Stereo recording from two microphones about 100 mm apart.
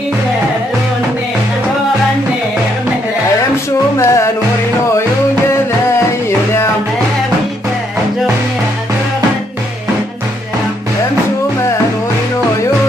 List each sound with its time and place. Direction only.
4.0 s music: 30° left (ahead or behind)